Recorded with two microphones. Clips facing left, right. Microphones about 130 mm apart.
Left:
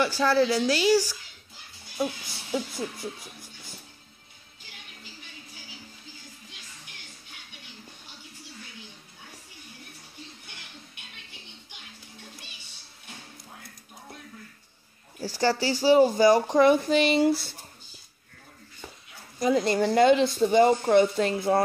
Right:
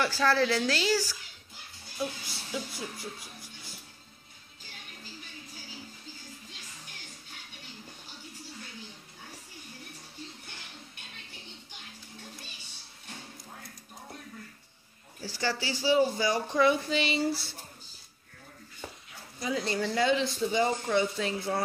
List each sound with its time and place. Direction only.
0.0 s a woman's voice: 15° left (ahead or behind)
15.1 s speech: 40° left (ahead or behind); by 17.4 s 55° left (ahead or behind)
19.4 s speech: 50° left (ahead or behind)